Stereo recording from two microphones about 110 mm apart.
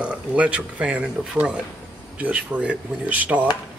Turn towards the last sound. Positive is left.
turn(degrees=-15)  # may be behind; listen again after turning